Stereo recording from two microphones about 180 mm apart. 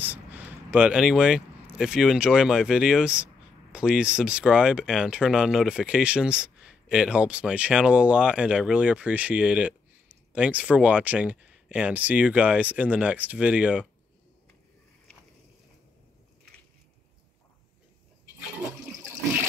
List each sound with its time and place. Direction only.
0.0 s speech: 10° right (ahead or behind)
18.9 s toilet flush: 15° right (ahead or behind)